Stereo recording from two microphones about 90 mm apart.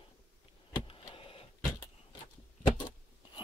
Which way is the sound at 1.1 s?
85° left.